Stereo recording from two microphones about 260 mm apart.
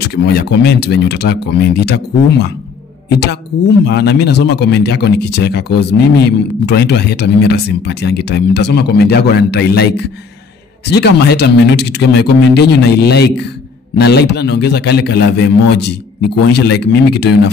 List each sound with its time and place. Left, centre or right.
0.1 s speech: left